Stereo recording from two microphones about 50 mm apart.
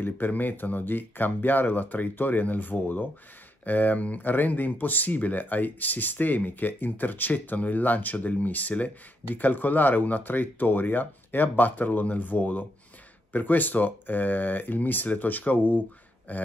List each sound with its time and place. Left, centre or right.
0.0 s speech: left